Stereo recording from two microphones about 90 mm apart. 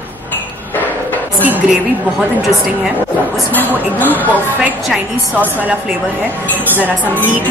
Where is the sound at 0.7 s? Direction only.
20° left (ahead or behind).